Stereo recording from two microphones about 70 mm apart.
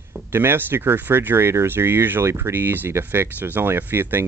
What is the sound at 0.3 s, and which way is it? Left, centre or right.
Speech, right.